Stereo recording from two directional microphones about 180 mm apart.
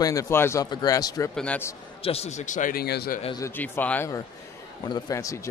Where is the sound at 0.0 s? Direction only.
15° left (ahead or behind).